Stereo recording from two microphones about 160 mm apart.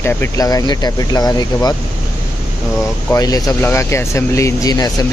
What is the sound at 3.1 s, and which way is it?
Speech, 20° left (ahead or behind).